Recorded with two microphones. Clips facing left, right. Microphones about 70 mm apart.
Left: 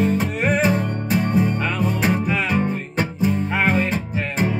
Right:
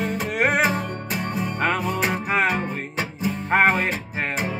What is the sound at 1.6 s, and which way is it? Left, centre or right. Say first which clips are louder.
Music: even; right.